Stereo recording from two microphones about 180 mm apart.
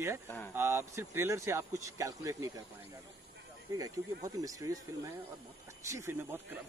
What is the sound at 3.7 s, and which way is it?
A man's voice, 20° right (ahead or behind).